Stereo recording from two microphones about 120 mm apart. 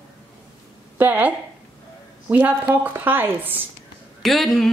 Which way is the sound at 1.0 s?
15° right (ahead or behind).